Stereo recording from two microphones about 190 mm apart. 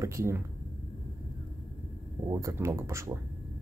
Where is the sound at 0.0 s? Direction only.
15° right (ahead or behind).